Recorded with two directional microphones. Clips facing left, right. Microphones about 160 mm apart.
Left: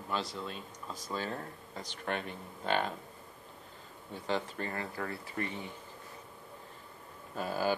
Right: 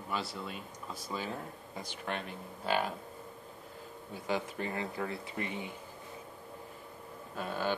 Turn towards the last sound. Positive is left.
turn(degrees=5)  # may be behind; listen again after turning